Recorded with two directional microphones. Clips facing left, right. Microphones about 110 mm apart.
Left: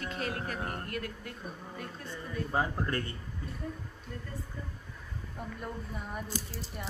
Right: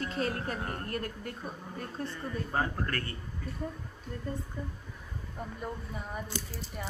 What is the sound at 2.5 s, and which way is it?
Speech, 15° left (ahead or behind).